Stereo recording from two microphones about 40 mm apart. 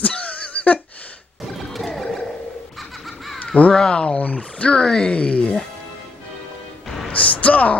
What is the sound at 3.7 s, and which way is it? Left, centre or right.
Speech, left.